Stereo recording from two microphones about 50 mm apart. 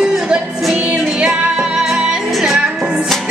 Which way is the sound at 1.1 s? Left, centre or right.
Centre.